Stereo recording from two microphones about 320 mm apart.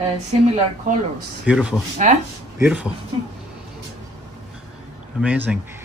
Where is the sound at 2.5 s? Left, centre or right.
Centre.